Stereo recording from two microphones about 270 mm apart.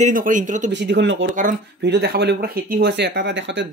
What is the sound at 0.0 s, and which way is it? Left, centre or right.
Speech, right.